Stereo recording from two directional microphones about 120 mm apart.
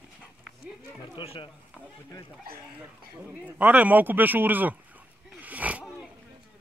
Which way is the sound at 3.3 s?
10° right (ahead or behind).